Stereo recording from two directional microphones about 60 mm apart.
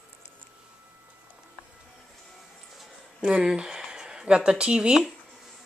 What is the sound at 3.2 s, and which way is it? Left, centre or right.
Speech, centre.